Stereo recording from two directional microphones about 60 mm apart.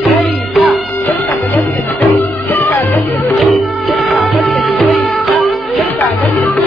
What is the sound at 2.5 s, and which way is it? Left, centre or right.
Music, left.